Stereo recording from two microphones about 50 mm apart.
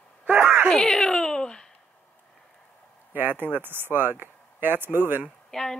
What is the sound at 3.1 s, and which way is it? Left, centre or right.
Speech, right.